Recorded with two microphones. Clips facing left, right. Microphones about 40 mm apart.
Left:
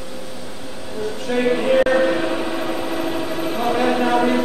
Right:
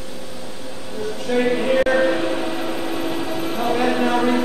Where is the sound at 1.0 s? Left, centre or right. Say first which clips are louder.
Even; centre.